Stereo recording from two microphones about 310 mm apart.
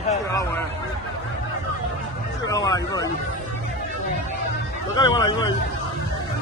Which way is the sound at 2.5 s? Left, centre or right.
Centre.